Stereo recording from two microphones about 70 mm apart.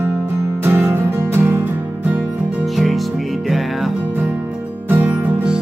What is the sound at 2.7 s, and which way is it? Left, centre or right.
Music, centre.